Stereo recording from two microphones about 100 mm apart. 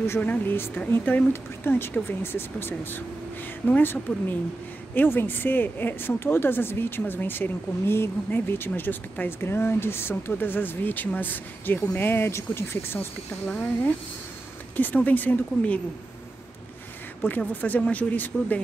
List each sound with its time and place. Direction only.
0.2 s speech: 20° left (ahead or behind)
14.8 s speech: 15° left (ahead or behind)
17.2 s speech: 20° left (ahead or behind)